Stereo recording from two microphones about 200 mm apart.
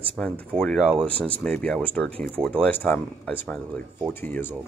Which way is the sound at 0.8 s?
25° right (ahead or behind).